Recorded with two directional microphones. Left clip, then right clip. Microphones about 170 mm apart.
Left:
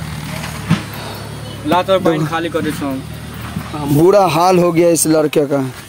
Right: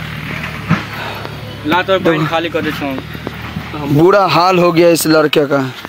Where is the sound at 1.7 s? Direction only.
70° left (ahead or behind).